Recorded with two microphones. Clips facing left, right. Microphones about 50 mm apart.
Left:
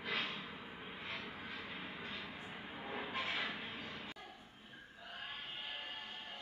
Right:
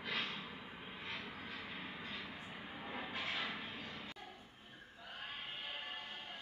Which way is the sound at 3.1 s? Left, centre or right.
Left.